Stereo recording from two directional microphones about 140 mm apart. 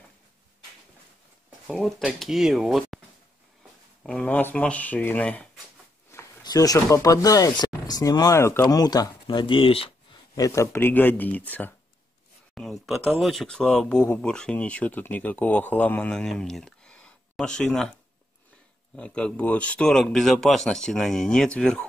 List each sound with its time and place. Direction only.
1.7 s speech: centre (ahead or behind)
4.0 s speech: 5° left (ahead or behind)
6.1 s a sound: 20° left (ahead or behind)
6.4 s speech: 25° left (ahead or behind)
10.3 s speech: 25° left (ahead or behind)
12.5 s speech: centre (ahead or behind)
18.9 s speech: 10° left (ahead or behind)